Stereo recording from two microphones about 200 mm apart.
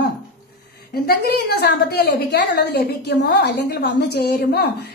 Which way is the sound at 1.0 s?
55° left (ahead or behind).